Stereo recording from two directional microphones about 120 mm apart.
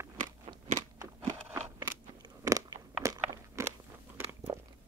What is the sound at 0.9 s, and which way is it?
Crunch, 25° right (ahead or behind).